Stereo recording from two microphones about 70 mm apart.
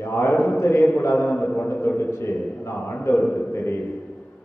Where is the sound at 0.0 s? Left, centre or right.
Left.